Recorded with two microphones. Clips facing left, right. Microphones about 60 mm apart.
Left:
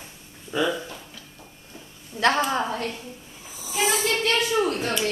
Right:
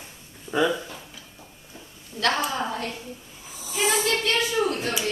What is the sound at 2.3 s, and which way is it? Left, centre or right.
Speech, left.